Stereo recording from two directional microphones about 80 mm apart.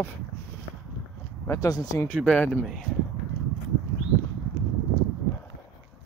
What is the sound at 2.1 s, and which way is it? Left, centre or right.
Speech, centre.